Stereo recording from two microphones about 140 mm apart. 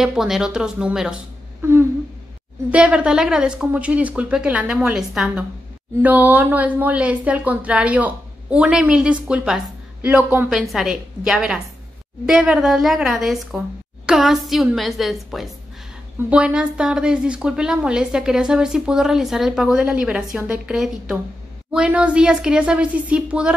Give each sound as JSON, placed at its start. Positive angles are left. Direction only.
{"t": 0.0, "sound": "a woman's voice", "side_deg": -5}
{"t": 1.6, "sound": "a sound", "side_deg": -15}
{"t": 2.7, "sound": "a woman's voice", "side_deg": -10}